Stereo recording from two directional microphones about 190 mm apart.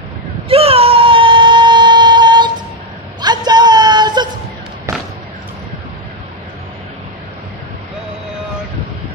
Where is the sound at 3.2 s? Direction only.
20° right (ahead or behind).